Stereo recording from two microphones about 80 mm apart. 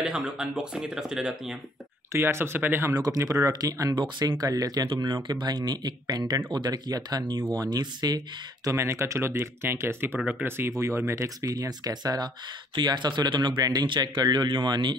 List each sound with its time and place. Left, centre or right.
0.0 s speech: centre
2.1 s speech: right
2.9 s speech: right
3.9 s speech: right
4.5 s speech: right
4.8 s speech: right
5.1 s speech: right
8.6 s speech: right
13.6 s speech: right
13.8 s speech: right